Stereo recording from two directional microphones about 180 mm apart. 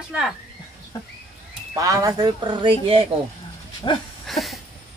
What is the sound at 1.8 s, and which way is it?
Speech, 20° right (ahead or behind).